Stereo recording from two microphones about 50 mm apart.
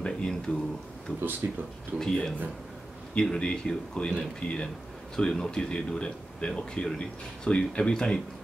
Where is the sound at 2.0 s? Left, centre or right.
Centre.